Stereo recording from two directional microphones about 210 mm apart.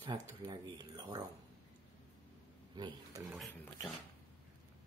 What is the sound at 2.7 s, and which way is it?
Speech, 20° right (ahead or behind).